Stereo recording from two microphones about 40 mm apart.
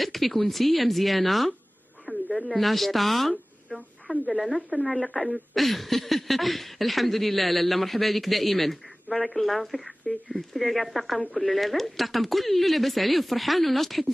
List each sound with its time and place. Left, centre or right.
0.0 s speech: centre
2.1 s a sound: left
2.4 s a woman's voice: centre
4.1 s a woman's voice: left
5.3 s speech: centre